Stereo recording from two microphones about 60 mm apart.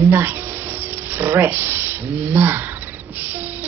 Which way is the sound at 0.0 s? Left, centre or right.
Right.